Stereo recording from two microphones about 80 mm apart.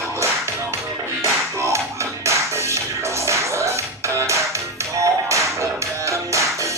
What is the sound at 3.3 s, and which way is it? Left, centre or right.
Music, right.